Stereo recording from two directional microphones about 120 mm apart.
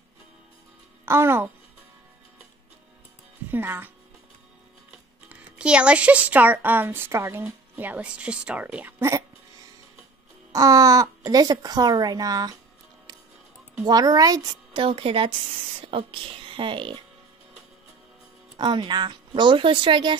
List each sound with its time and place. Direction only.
1.0 s speech: 20° right (ahead or behind)
3.4 s speech: 15° right (ahead or behind)
5.3 s speech: 10° right (ahead or behind)
10.5 s speech: 30° right (ahead or behind)
13.8 s speech: 35° right (ahead or behind)
18.6 s speech: 40° right (ahead or behind)